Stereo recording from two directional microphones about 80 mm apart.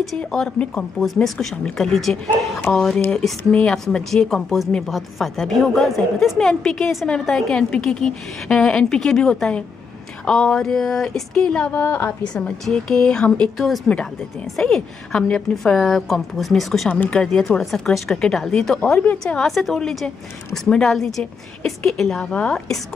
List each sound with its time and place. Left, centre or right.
0.2 s a woman's voice: centre
16.9 s a woman's voice: left
17.2 s a woman's voice: centre
18.8 s a woman's voice: centre
19.2 s a woman's voice: centre